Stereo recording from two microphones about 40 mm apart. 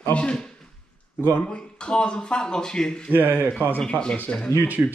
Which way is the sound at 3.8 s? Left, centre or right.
Left.